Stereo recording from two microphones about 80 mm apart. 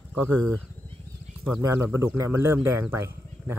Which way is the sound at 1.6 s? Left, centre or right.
Right.